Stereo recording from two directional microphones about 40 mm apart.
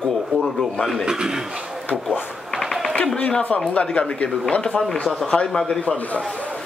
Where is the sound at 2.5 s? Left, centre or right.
Centre.